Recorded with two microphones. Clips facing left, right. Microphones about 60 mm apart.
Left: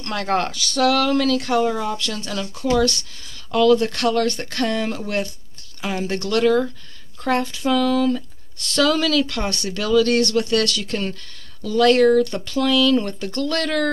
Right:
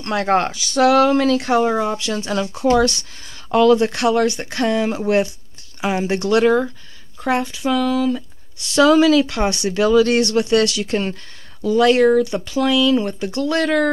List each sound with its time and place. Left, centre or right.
0.0 s speech: right
7.2 s speech: centre